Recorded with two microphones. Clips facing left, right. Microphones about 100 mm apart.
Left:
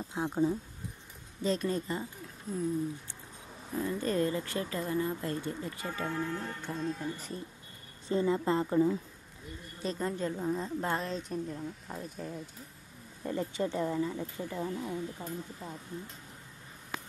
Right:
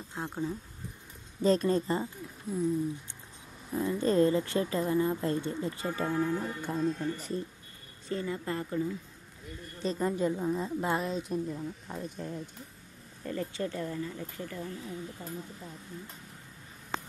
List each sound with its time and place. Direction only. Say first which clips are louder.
0.1 s speech: left 5 dB; 15° left (ahead or behind)
1.4 s a woman's voice: right 5 dB; 40° right (ahead or behind)
3.7 s speech: right 4 dB; 25° right (ahead or behind)
5.9 s speech: right 4 dB; 15° right (ahead or behind); by 7.3 s centre (ahead or behind)
8.1 s speech: left 5 dB; 25° left (ahead or behind)
9.9 s a woman's voice: right 5 dB; 10° right (ahead or behind)
13.2 s speech: left 1 dB; 15° left (ahead or behind)